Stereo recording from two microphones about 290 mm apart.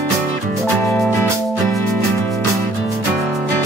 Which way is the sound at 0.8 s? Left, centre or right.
Centre.